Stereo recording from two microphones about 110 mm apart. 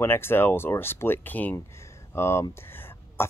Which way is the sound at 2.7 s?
20° left (ahead or behind).